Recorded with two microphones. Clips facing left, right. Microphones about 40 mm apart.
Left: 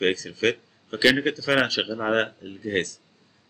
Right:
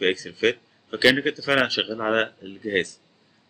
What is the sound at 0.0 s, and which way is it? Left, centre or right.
Speech, centre.